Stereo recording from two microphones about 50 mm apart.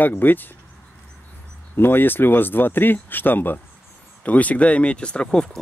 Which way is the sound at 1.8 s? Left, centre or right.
Left.